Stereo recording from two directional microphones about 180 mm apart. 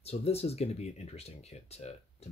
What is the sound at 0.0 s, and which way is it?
Speech, 35° left (ahead or behind).